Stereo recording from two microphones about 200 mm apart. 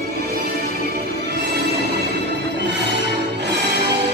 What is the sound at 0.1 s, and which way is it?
Music, 50° right (ahead or behind).